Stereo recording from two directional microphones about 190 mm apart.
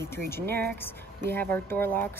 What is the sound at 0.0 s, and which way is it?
Speech, 15° left (ahead or behind).